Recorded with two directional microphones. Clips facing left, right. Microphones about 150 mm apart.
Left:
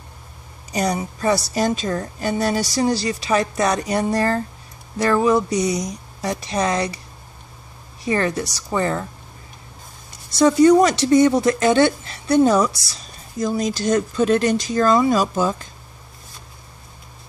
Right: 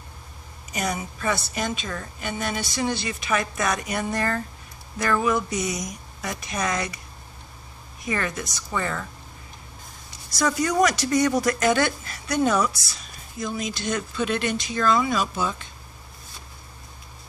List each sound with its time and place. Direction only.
0.7 s speech: 35° left (ahead or behind)
8.0 s speech: 30° left (ahead or behind)
10.3 s speech: 30° left (ahead or behind)